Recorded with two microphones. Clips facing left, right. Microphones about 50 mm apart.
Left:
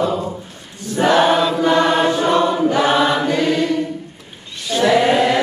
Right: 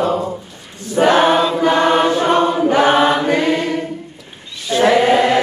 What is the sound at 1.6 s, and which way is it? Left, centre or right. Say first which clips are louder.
Chant: right 1 dB; right.